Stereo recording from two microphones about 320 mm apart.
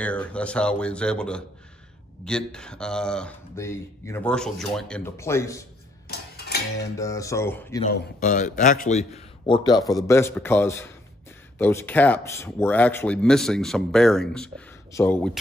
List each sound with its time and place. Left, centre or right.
0.0 s speech: centre
6.0 s music: left
7.0 s a man's voice: centre
7.9 s a man's voice: left; by 15.3 s centre